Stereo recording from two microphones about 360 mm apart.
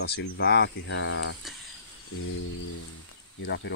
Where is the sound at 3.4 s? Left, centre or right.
Left.